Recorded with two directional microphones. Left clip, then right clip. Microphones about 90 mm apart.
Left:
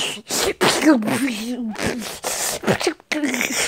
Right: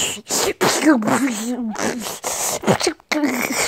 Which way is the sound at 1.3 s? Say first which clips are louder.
Right 2 dB; 40° right (ahead or behind).